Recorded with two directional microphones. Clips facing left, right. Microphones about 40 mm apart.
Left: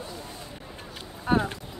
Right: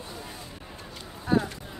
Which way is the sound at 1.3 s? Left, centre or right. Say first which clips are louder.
Left 1 dB; left.